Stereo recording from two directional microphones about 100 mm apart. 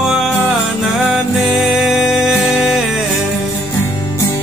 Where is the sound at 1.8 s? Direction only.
5° right (ahead or behind).